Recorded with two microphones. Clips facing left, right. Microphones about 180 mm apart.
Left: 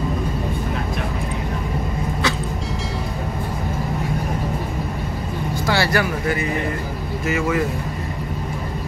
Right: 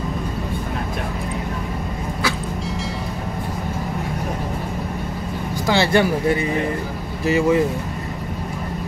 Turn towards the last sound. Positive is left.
turn(degrees=-30)  # may be behind; listen again after turning